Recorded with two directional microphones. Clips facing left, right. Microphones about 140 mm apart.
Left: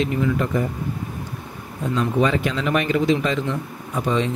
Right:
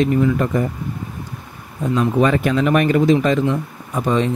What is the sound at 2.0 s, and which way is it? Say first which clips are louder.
Speech: right 3 dB; 50° right (ahead or behind).